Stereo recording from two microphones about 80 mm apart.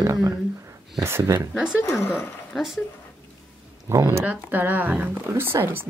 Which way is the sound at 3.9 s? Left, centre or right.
Right.